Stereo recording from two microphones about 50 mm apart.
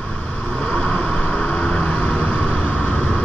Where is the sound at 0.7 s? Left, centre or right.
Centre.